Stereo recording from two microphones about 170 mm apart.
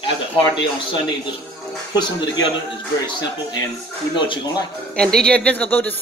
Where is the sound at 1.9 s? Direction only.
25° left (ahead or behind).